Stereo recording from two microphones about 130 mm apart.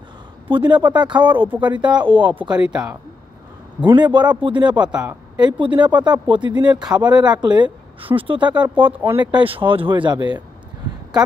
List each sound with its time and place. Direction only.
0.5 s speech: 35° right (ahead or behind)
2.7 s speech: 5° right (ahead or behind)
3.8 s speech: 35° right (ahead or behind)
4.8 s speech: 5° right (ahead or behind)
5.4 s speech: 35° right (ahead or behind)